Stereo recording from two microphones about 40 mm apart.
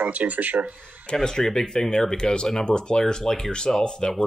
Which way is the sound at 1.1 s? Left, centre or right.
Centre.